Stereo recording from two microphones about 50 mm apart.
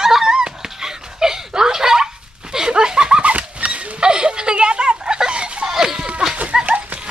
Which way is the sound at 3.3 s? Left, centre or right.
Right.